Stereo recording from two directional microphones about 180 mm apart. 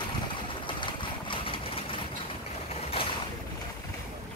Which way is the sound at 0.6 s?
25° left (ahead or behind).